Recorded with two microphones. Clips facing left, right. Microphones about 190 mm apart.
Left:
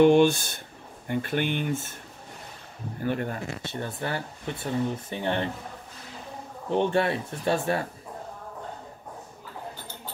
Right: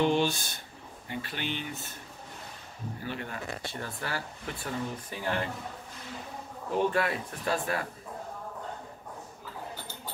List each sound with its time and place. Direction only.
0.0 s speech: 55° left (ahead or behind)
3.0 s speech: 50° left (ahead or behind)
3.6 s speech: 25° left (ahead or behind)
6.7 s speech: 25° left (ahead or behind)